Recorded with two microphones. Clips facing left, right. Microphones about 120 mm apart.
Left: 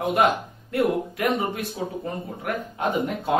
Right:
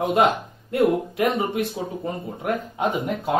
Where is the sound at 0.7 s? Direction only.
20° right (ahead or behind).